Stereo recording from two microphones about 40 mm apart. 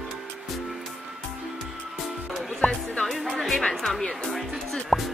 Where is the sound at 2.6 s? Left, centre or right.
Left.